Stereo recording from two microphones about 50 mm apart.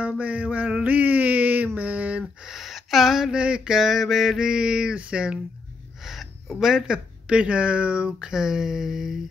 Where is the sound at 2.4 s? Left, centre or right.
Centre; by 5.4 s right.